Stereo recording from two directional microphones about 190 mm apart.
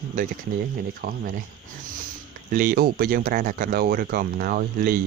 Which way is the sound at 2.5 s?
45° right (ahead or behind).